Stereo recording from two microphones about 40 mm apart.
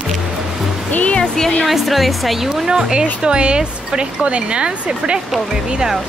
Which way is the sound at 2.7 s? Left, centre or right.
Centre.